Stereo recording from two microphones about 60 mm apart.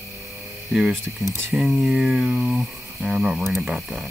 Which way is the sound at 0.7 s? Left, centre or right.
Centre.